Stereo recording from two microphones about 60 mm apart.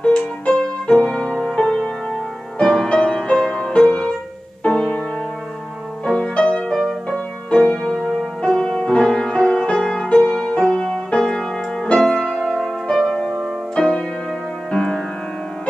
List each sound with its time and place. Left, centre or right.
0.0 s music: centre
6.0 s music: centre
6.7 s music: centre
13.7 s music: centre